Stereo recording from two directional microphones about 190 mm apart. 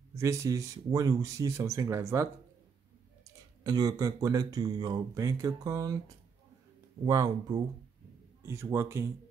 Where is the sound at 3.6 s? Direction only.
20° right (ahead or behind).